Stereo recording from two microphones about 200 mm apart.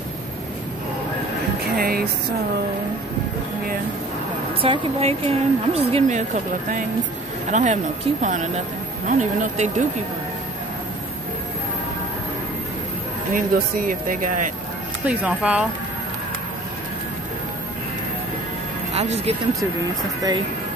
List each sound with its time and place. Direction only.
1.8 s music: 50° right (ahead or behind)
4.6 s a woman's voice: 25° right (ahead or behind)
7.5 s a woman's voice: 35° right (ahead or behind)
13.3 s speech: 45° right (ahead or behind)
15.0 s speech: 5° right (ahead or behind)
18.9 s a woman's voice: 30° right (ahead or behind)